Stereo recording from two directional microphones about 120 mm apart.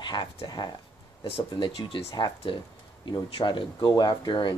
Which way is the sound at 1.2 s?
55° left (ahead or behind).